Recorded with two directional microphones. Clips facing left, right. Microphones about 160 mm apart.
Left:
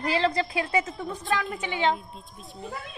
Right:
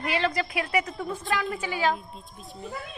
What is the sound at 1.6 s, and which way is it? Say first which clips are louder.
Speech: left 1 dB; 25° left (ahead or behind).